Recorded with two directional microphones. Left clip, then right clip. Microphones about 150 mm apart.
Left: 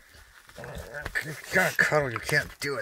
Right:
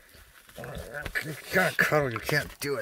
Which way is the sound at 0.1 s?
25° right (ahead or behind).